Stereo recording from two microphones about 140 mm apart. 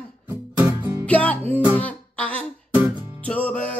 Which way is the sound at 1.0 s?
10° left (ahead or behind).